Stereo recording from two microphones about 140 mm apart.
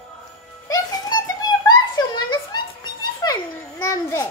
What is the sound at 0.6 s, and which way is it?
Music, 25° left (ahead or behind).